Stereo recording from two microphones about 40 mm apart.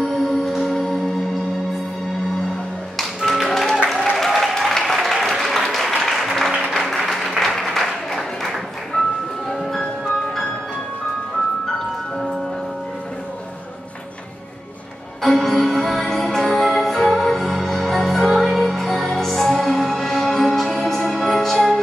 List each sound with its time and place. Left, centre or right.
0.0 s music: centre
3.0 s music: centre
4.3 s applause: centre
9.5 s music: centre
15.2 s music: centre